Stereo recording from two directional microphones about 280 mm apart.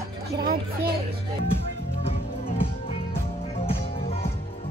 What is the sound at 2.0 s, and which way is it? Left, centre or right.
Music, left.